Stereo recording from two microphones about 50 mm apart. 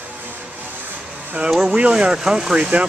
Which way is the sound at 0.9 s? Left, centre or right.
Right.